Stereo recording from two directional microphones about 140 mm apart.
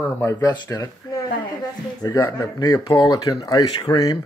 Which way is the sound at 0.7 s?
25° left (ahead or behind).